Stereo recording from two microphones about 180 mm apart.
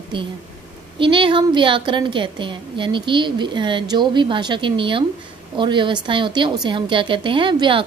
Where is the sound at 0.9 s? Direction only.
30° right (ahead or behind).